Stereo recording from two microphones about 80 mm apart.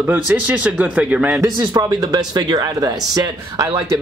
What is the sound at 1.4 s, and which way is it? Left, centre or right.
Speech, right.